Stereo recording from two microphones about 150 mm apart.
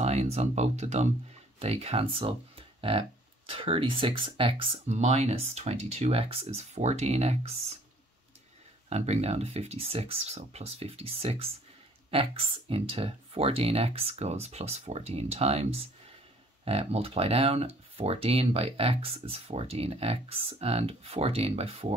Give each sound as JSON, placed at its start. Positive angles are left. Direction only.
{"t": 0.0, "sound": "speech", "side_deg": -45}
{"t": 4.8, "sound": "speech", "side_deg": -50}
{"t": 8.8, "sound": "speech", "side_deg": -45}